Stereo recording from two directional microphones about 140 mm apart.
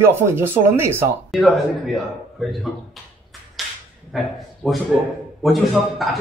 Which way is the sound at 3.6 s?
Centre (ahead or behind).